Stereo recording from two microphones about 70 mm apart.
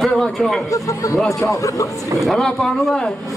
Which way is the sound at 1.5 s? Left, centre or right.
Left.